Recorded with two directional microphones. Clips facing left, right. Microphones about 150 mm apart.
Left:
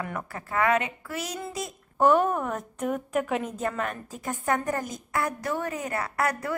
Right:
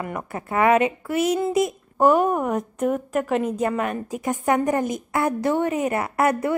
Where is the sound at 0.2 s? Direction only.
20° right (ahead or behind).